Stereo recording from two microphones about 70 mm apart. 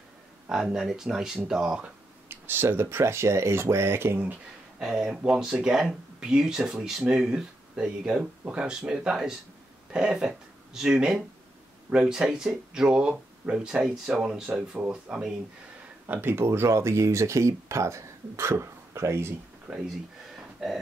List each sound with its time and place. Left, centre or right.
0.5 s speech: centre
2.2 s speech: right
4.7 s speech: centre
16.1 s speech: right
19.7 s speech: centre